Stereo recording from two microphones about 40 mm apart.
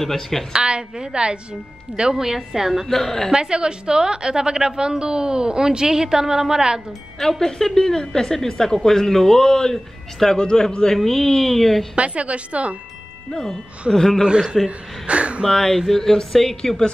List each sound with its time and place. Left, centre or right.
0.0 s a woman's voice: centre
0.5 s a woman's voice: right
2.9 s a woman's voice: centre
3.3 s a woman's voice: right
7.2 s a woman's voice: centre
10.4 s a man's voice: centre
11.9 s a woman's voice: right
13.9 s a woman's voice: centre
15.0 s a woman's voice: right
15.5 s a woman's voice: centre